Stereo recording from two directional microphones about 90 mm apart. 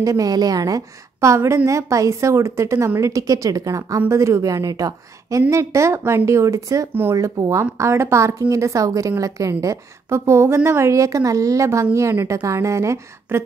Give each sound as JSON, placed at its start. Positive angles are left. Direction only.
{"t": 0.0, "sound": "a woman's voice", "side_deg": -40}
{"t": 6.9, "sound": "speech", "side_deg": -25}
{"t": 7.2, "sound": "a woman's voice", "side_deg": -35}